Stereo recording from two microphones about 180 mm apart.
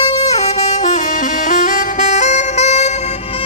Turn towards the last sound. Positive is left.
turn(degrees=35)  # may be behind; listen again after turning